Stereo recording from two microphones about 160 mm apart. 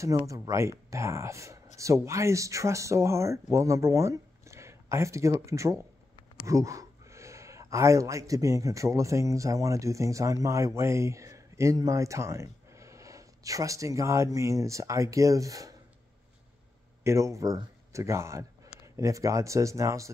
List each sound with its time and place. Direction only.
0.0 s speech: 20° right (ahead or behind)
17.0 s speech: 20° right (ahead or behind)